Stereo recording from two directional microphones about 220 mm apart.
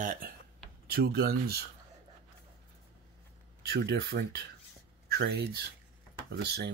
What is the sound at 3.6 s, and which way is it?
Speech, 45° right (ahead or behind).